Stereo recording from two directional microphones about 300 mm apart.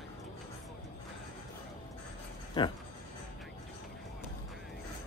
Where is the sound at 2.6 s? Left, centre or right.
Centre.